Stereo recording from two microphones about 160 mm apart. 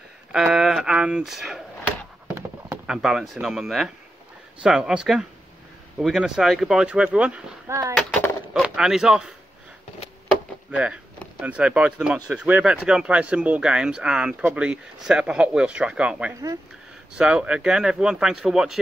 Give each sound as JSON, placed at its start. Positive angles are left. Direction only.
{"t": 0.3, "sound": "speech", "side_deg": -5}
{"t": 2.2, "sound": "horse", "side_deg": -15}
{"t": 2.9, "sound": "speech", "side_deg": -5}
{"t": 7.6, "sound": "speech", "side_deg": -20}
{"t": 7.9, "sound": "a sound", "side_deg": 5}
{"t": 8.6, "sound": "speech", "side_deg": -5}
{"t": 10.7, "sound": "speech", "side_deg": -5}